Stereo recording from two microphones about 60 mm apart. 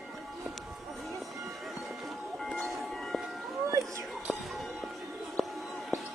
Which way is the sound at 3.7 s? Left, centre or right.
Right.